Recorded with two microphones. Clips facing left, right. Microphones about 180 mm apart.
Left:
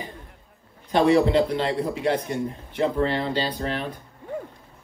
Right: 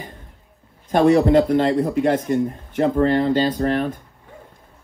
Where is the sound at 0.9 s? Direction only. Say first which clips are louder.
Right 4 dB; 45° right (ahead or behind).